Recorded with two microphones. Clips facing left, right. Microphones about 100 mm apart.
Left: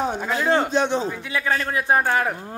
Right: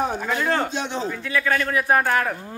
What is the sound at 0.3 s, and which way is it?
Speech, 20° left (ahead or behind).